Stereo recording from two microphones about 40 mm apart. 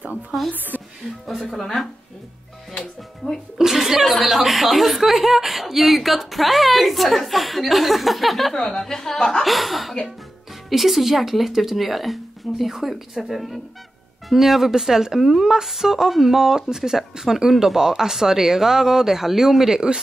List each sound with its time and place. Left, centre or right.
1.5 s a woman's voice: centre
2.7 s music: centre
3.5 s speech: centre
8.5 s a woman's voice: centre
9.4 s speech: centre